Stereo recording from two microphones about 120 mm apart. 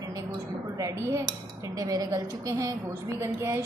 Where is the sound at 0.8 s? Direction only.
20° right (ahead or behind).